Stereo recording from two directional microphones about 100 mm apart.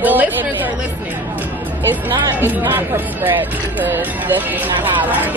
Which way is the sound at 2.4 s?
20° right (ahead or behind).